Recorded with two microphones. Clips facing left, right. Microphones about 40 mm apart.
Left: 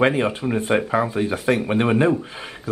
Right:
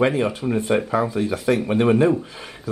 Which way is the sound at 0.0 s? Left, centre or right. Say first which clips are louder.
Left 1 dB; left.